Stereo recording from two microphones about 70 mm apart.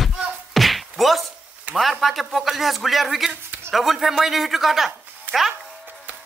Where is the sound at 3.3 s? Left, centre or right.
Right.